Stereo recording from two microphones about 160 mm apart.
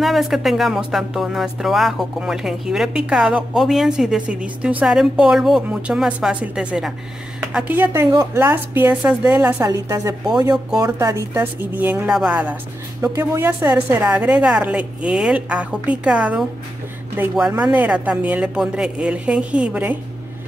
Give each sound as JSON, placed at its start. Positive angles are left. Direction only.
{"t": 0.0, "sound": "a woman's voice", "side_deg": 0}
{"t": 13.0, "sound": "a woman's voice", "side_deg": -20}
{"t": 14.1, "sound": "a woman's voice", "side_deg": -10}